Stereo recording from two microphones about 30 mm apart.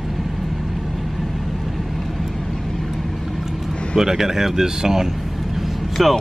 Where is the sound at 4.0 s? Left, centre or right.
Centre.